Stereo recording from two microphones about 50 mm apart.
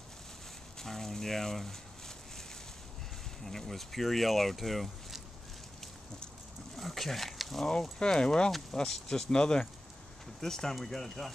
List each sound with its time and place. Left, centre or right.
0.7 s a sound: centre
3.4 s speech: centre
6.8 s speech: centre
8.0 s speech: centre